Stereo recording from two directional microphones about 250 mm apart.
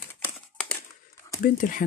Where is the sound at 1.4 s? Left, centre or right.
Left.